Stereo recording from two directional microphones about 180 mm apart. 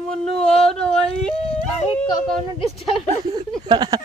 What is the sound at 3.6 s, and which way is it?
Speech, 25° right (ahead or behind).